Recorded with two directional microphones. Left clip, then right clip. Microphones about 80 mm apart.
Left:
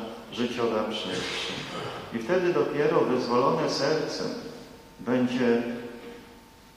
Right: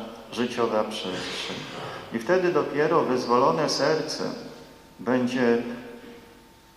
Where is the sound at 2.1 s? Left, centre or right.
Right.